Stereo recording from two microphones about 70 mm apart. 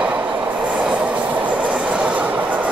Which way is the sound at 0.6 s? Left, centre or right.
Centre.